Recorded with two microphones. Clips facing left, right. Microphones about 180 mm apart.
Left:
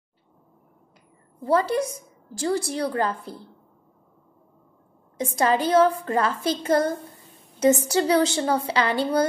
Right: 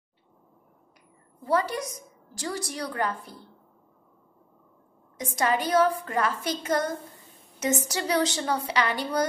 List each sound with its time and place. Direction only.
1.4 s a woman's voice: 30° left (ahead or behind)
5.1 s a woman's voice: 30° left (ahead or behind)